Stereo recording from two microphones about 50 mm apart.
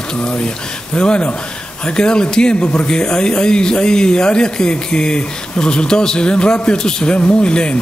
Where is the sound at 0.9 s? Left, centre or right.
Centre.